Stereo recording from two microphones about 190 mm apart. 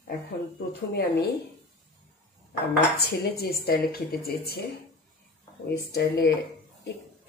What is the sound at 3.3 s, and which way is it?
Speech, 55° left (ahead or behind).